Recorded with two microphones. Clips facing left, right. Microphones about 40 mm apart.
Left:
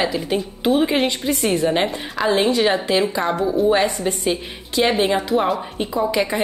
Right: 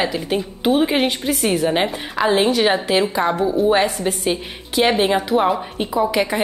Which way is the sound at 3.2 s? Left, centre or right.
Centre.